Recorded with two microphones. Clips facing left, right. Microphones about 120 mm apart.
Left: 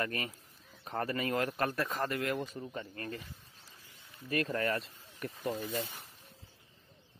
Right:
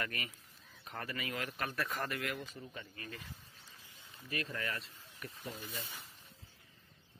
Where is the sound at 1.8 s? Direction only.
25° left (ahead or behind).